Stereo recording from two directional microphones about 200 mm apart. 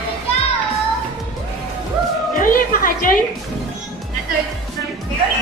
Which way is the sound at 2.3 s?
45° left (ahead or behind).